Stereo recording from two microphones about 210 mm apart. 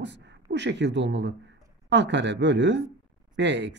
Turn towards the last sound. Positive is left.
turn(degrees=-55)  # may be behind; listen again after turning